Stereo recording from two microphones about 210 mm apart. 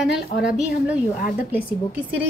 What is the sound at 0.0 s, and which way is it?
A woman's voice, 5° right (ahead or behind).